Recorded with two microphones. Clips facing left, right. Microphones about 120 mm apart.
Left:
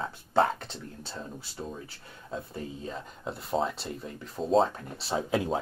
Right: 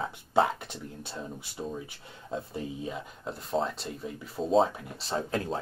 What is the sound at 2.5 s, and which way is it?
Speech, 15° right (ahead or behind).